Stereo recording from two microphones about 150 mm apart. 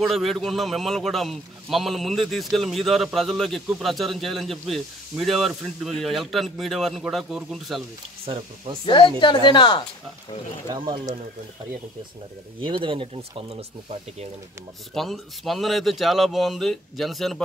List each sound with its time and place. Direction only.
0.0 s a man's voice: centre (ahead or behind)
8.3 s speech: 35° right (ahead or behind)
8.8 s a woman's voice: 35° left (ahead or behind)
12.6 s speech: 35° right (ahead or behind)
15.0 s a man's voice: centre (ahead or behind)